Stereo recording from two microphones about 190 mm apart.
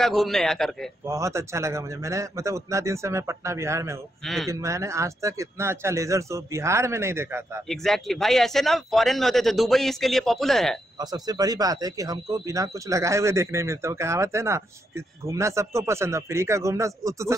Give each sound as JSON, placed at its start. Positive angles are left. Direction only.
{"t": 0.0, "sound": "a man's voice", "side_deg": 0}
{"t": 1.0, "sound": "speech", "side_deg": -15}
{"t": 4.2, "sound": "a man's voice", "side_deg": 0}
{"t": 4.5, "sound": "speech", "side_deg": -15}
{"t": 7.6, "sound": "a man's voice", "side_deg": 0}
{"t": 11.0, "sound": "speech", "side_deg": -20}